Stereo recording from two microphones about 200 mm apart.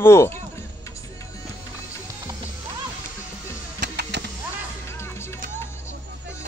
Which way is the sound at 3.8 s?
60° right (ahead or behind).